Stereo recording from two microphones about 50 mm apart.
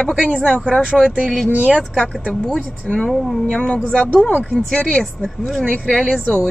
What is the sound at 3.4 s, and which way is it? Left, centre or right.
Speech, left.